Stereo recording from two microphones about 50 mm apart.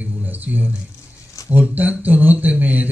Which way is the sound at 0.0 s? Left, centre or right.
Right.